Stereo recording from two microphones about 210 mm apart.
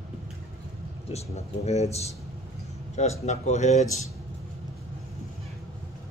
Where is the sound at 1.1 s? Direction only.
30° left (ahead or behind).